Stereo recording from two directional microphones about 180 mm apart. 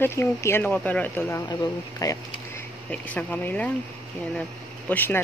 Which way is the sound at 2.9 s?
10° left (ahead or behind).